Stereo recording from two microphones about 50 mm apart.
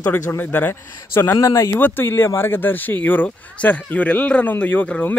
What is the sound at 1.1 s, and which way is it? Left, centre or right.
Speech, left.